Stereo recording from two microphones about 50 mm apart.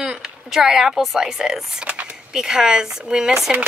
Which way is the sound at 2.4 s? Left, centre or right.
Centre.